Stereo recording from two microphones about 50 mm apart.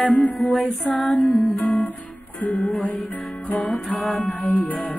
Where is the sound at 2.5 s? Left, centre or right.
Centre.